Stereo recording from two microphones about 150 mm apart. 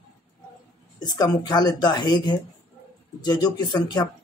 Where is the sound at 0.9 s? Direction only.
25° left (ahead or behind).